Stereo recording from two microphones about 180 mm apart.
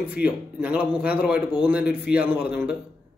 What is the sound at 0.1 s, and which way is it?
A man's voice, 5° right (ahead or behind).